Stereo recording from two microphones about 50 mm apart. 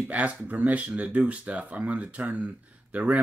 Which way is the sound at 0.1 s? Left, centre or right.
Right.